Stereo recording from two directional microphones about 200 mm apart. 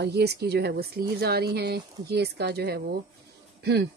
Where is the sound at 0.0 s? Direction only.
55° right (ahead or behind).